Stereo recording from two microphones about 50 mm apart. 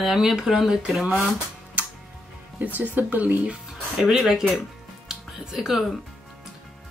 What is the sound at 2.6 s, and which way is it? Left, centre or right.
Speech, right.